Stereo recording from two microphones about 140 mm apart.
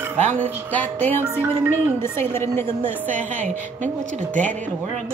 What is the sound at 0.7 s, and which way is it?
Speech, 10° left (ahead or behind).